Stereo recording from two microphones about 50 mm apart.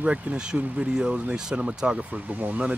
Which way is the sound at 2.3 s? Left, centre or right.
Right.